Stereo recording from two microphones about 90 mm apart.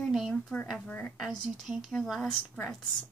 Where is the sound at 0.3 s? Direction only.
15° left (ahead or behind).